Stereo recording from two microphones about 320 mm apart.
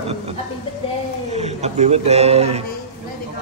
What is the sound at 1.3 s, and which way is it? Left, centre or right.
Speech, centre.